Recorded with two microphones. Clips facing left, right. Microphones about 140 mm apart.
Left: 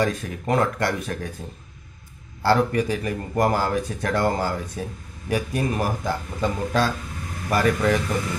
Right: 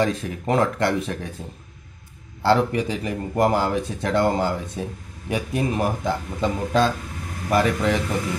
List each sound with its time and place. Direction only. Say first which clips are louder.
0.0 s speech: right 1 dB; 25° right (ahead or behind)
2.4 s speech: right 1 dB; 25° right (ahead or behind)